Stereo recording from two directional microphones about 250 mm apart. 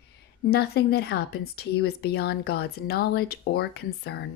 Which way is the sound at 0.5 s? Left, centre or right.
Left.